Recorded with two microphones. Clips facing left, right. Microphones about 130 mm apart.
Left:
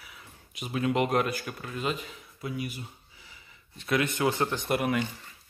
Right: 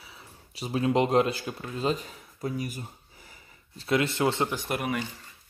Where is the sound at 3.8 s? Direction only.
25° right (ahead or behind).